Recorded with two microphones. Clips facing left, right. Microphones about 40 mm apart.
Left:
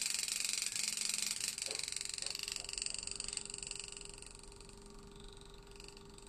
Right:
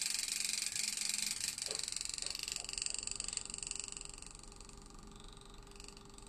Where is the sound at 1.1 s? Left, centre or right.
Centre.